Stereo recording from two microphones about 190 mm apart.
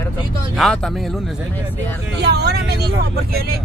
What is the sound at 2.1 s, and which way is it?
Speech, 60° right (ahead or behind).